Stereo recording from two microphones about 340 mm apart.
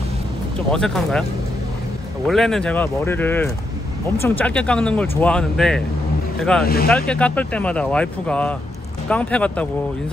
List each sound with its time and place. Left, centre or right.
0.7 s speech: centre
2.2 s speech: centre
6.6 s speech: left
7.1 s speech: centre